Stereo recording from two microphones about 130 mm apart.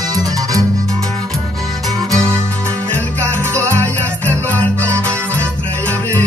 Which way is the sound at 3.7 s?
15° left (ahead or behind).